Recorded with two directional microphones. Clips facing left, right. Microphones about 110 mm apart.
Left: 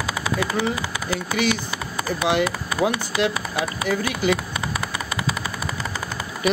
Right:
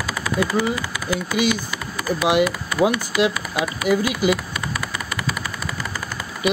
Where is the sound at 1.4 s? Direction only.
25° left (ahead or behind).